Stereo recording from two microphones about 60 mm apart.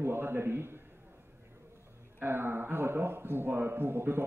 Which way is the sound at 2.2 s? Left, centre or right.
Right.